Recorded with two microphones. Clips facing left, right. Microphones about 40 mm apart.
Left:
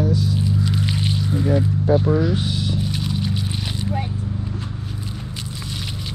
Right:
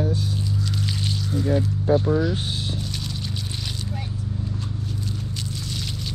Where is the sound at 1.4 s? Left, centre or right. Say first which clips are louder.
Left 2 dB; left.